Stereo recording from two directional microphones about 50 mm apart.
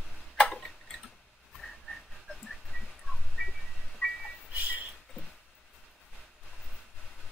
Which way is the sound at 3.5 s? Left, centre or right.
Centre.